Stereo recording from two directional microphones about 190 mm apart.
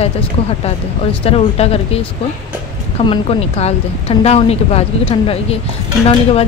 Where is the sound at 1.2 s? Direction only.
30° left (ahead or behind).